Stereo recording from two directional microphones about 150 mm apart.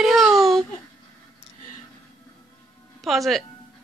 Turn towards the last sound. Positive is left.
turn(degrees=0)  # may be behind; listen again after turning